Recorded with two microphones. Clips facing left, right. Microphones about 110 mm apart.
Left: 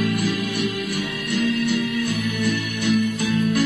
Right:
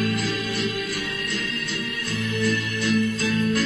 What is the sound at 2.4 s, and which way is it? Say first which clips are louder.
Music: left 1 dB; 20° left (ahead or behind).